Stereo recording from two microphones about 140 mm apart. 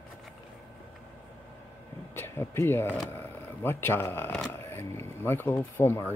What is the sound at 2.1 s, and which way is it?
Speech, 15° left (ahead or behind).